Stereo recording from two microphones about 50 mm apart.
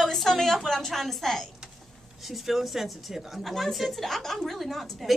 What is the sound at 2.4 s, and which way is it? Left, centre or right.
Speech, centre.